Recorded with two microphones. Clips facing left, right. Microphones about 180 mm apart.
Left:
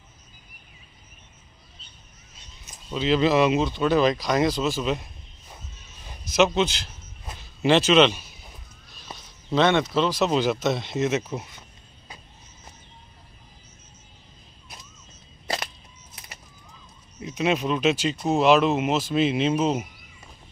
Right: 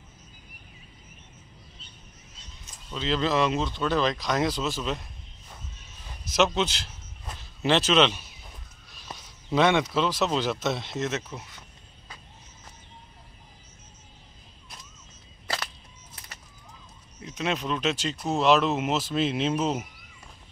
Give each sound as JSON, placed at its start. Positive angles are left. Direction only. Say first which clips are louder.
{"t": 2.9, "sound": "speech", "louder": "left 6 dB", "side_deg": 10}
{"t": 6.0, "sound": "a man's voice", "louder": "left 3 dB", "side_deg": 5}
{"t": 9.5, "sound": "speech", "louder": "left 2 dB", "side_deg": -10}
{"t": 11.0, "sound": "speech", "louder": "left 6 dB", "side_deg": 15}
{"t": 15.4, "sound": "music", "louder": "left 3 dB", "side_deg": 20}
{"t": 17.2, "sound": "speech", "louder": "left 6 dB", "side_deg": 10}